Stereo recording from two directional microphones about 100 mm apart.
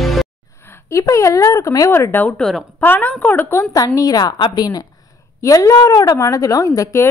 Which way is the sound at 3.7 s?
35° left (ahead or behind).